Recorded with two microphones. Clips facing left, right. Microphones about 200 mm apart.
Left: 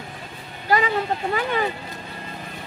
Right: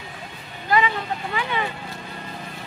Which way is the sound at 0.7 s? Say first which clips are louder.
Left 1 dB; 45° left (ahead or behind).